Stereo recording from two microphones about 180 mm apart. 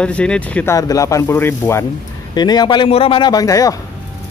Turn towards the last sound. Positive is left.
turn(degrees=20)  # may be behind; listen again after turning